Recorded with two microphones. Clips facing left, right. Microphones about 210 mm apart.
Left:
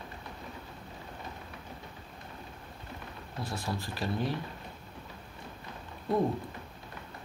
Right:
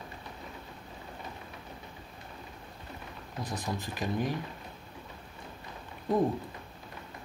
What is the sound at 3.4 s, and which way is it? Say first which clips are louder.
Speech: even; 20° right (ahead or behind).